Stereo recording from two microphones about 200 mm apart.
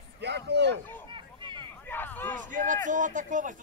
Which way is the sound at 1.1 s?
25° right (ahead or behind).